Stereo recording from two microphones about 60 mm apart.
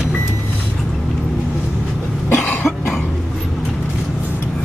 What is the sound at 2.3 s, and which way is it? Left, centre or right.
Cough, left.